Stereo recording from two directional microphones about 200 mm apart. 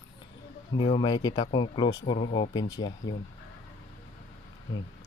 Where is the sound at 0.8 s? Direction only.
25° left (ahead or behind).